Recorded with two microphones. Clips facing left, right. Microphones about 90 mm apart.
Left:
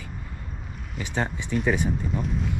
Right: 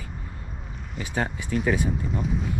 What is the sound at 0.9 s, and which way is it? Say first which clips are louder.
Speech: even; 50° right (ahead or behind).